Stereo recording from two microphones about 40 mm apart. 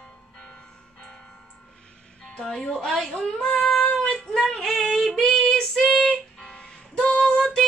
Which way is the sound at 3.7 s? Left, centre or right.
Left.